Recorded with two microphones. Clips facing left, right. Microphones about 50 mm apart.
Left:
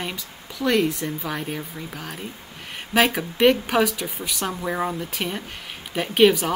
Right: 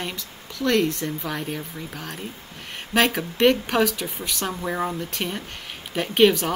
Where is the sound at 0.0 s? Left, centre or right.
Centre.